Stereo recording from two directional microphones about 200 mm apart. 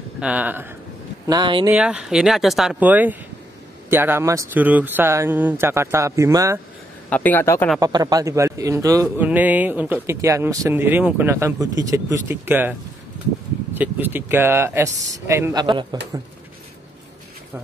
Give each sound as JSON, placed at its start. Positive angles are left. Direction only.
{"t": 0.2, "sound": "a man's voice", "side_deg": -5}
{"t": 1.2, "sound": "speech", "side_deg": -20}
{"t": 1.7, "sound": "a man's voice", "side_deg": -5}
{"t": 7.1, "sound": "a man's voice", "side_deg": 10}
{"t": 7.8, "sound": "a man's voice", "side_deg": -20}
{"t": 13.7, "sound": "a man's voice", "side_deg": -10}